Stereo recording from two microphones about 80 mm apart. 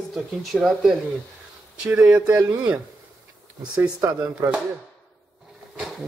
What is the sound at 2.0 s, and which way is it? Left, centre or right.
Speech, right.